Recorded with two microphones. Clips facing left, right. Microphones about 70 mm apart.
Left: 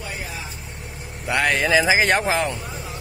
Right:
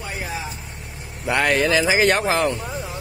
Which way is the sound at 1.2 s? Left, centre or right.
Centre.